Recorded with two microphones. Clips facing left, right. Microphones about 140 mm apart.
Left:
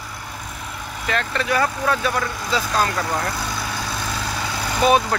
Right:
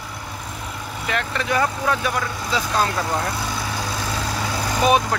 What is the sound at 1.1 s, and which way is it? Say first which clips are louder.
Speech: left 1 dB; 15° right (ahead or behind).